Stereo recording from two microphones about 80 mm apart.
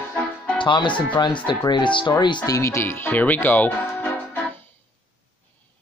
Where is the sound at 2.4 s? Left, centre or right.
Left.